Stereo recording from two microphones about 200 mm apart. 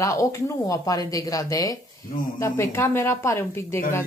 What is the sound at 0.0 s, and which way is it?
Speech, 15° left (ahead or behind).